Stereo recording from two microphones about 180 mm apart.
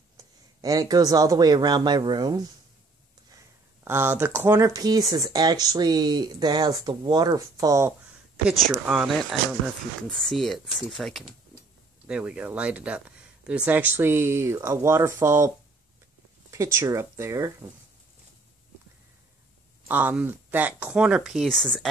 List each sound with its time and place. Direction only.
0.2 s speech: 20° right (ahead or behind)
8.5 s speech: 5° right (ahead or behind)
19.9 s speech: 10° right (ahead or behind)